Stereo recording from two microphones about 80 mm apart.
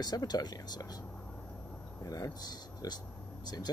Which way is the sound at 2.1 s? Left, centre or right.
Left.